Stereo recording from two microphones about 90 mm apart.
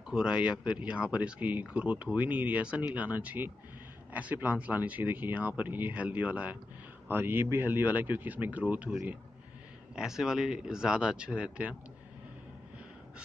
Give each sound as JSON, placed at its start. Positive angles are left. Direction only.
{"t": 0.1, "sound": "speech", "side_deg": -10}
{"t": 9.9, "sound": "speech", "side_deg": -5}